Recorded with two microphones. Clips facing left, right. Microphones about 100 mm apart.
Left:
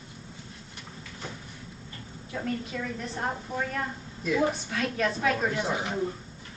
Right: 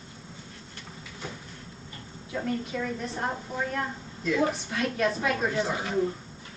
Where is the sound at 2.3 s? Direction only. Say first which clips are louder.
Right 2 dB; 5° right (ahead or behind).